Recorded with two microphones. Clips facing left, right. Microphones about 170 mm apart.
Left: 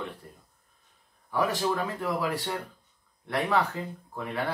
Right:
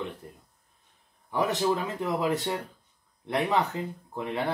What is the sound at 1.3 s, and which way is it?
Speech, 20° right (ahead or behind).